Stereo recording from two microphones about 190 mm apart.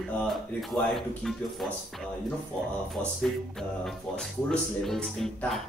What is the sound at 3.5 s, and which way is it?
Speech, centre (ahead or behind).